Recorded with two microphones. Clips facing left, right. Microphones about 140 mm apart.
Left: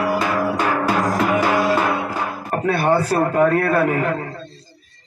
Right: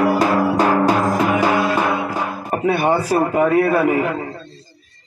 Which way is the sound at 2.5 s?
10° right (ahead or behind).